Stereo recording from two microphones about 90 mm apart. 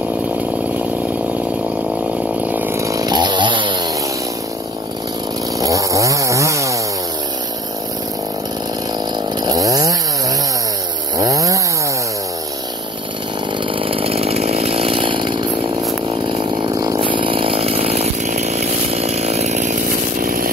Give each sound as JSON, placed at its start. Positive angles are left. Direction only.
{"t": 2.4, "sound": "chainsaw", "side_deg": -20}
{"t": 2.8, "sound": "chainsaw", "side_deg": -40}
{"t": 5.6, "sound": "chainsaw", "side_deg": -40}
{"t": 9.4, "sound": "chainsaw", "side_deg": -45}
{"t": 11.1, "sound": "chainsaw", "side_deg": -40}
{"t": 13.7, "sound": "chainsaw", "side_deg": -90}
{"t": 16.7, "sound": "chainsaw", "side_deg": -45}
{"t": 17.0, "sound": "chainsaw", "side_deg": -70}